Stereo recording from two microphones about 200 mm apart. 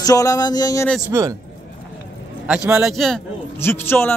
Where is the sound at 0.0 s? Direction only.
20° left (ahead or behind).